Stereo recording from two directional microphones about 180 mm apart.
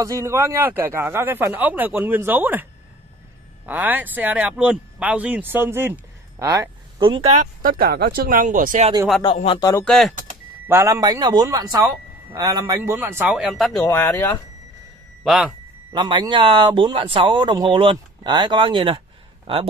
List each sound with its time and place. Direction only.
0.0 s a man's voice: 15° right (ahead or behind)
3.6 s a man's voice: 10° right (ahead or behind)
7.1 s speech: 35° right (ahead or behind)
7.6 s speech: 55° right (ahead or behind)
9.2 s speech: 30° left (ahead or behind)
9.8 s a man's voice: centre (ahead or behind)
10.7 s a man's voice: 15° right (ahead or behind); by 13.8 s centre (ahead or behind)
13.8 s speech: 10° left (ahead or behind)
15.2 s a man's voice: centre (ahead or behind)
15.9 s speech: 25° right (ahead or behind)